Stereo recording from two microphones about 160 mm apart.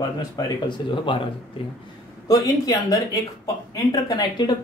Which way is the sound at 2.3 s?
20° left (ahead or behind).